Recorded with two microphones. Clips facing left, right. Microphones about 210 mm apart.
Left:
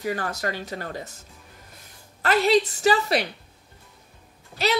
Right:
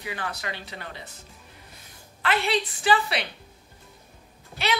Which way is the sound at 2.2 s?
40° left (ahead or behind).